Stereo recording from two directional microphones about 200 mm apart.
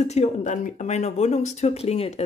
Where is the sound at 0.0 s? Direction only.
35° left (ahead or behind).